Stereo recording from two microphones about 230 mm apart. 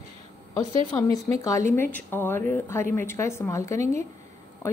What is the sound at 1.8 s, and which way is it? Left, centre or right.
A woman's voice, centre.